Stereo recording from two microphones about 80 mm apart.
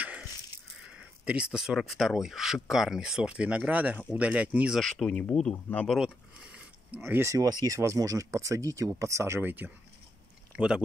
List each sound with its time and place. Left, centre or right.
0.7 s speech: centre
4.7 s speech: centre
5.9 s a sound: centre
7.0 s speech: right
7.3 s speech: right
10.5 s a sound: centre